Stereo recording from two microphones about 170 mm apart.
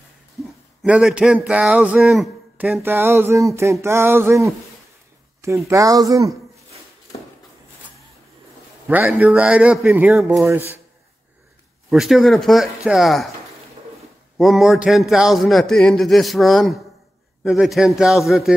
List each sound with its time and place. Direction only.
0.8 s speech: 5° right (ahead or behind)
5.7 s speech: 20° right (ahead or behind)
8.8 s speech: 10° right (ahead or behind)
11.9 s a man's voice: centre (ahead or behind)
14.4 s a man's voice: centre (ahead or behind)